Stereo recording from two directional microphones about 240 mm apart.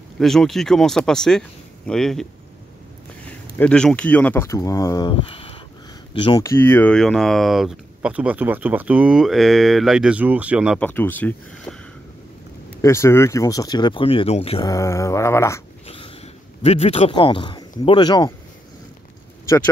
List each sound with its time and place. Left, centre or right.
0.2 s speech: centre
3.5 s speech: centre
10.9 s speech: centre
12.8 s speech: centre
16.6 s a man's voice: left